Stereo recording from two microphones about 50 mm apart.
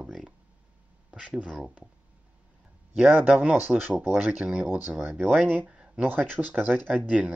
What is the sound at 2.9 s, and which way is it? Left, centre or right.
Speech, right.